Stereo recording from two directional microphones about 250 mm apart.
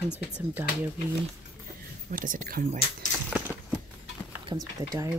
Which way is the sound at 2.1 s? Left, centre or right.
Right.